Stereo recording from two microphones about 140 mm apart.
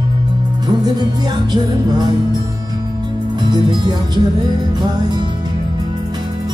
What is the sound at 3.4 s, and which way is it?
Music, 30° right (ahead or behind).